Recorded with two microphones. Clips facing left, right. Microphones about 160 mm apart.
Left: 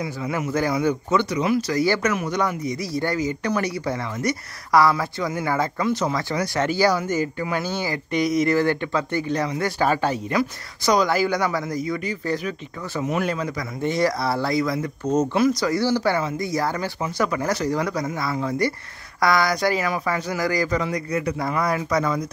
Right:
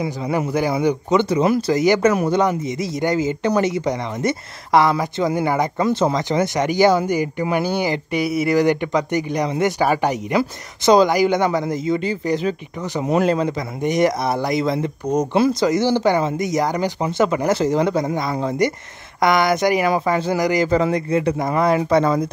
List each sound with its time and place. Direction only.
0.5 s speech: 15° right (ahead or behind)
5.8 s speech: 35° right (ahead or behind)
6.1 s speech: 20° right (ahead or behind)
13.0 s speech: 30° right (ahead or behind)